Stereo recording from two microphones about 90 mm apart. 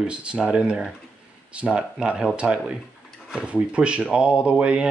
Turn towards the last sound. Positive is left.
turn(degrees=-10)  # may be behind; listen again after turning